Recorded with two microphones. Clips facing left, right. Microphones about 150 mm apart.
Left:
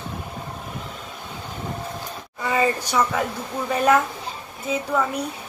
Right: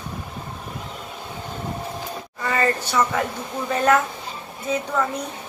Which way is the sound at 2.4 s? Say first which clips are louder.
Left 1 dB; 10° left (ahead or behind).